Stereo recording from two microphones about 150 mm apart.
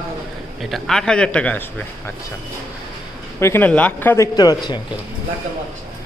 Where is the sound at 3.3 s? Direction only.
15° left (ahead or behind).